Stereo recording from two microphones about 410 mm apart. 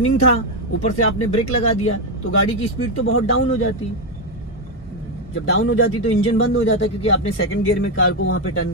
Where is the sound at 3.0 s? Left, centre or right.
Left.